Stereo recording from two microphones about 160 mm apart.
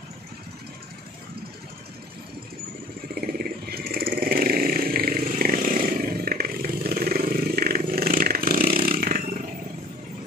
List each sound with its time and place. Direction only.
3.2 s vehicle: 70° right (ahead or behind)